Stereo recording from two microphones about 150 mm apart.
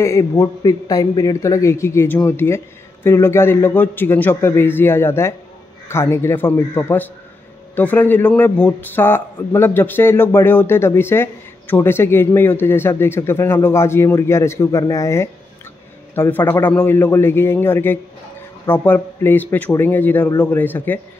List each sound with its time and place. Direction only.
0.0 s a man's voice: 20° left (ahead or behind)